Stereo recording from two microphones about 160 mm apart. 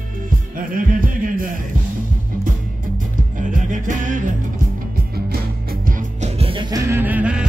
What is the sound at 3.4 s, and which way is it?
Music, 55° right (ahead or behind).